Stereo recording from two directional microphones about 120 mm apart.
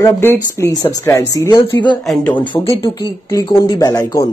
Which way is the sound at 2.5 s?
20° left (ahead or behind).